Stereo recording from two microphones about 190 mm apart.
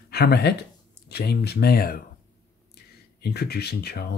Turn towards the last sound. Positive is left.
turn(degrees=60)  # may be behind; listen again after turning